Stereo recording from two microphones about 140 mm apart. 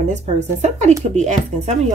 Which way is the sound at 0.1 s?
55° right (ahead or behind).